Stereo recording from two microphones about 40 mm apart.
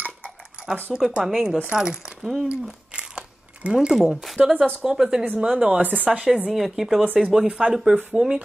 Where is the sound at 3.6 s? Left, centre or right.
Right.